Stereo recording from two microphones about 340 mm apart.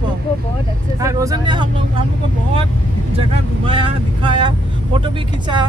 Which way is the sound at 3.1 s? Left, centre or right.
Centre.